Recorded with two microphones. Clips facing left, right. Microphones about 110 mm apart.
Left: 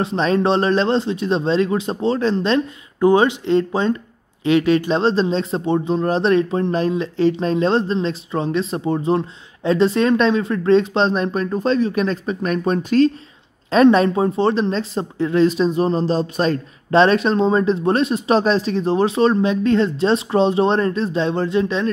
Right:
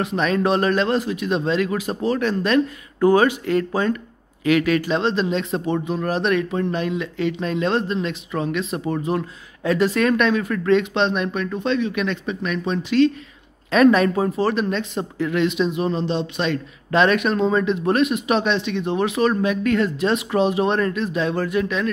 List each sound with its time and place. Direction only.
0.0 s speech: 30° left (ahead or behind)
13.7 s speech: 30° left (ahead or behind)